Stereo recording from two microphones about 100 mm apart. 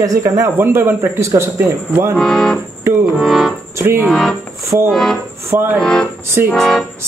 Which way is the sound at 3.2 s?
Centre (ahead or behind).